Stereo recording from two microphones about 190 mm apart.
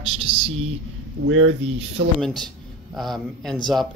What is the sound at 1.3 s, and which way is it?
Speech, 80° right.